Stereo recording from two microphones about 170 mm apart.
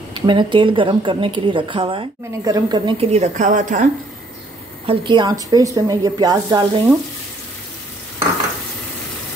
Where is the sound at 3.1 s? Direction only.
45° right (ahead or behind).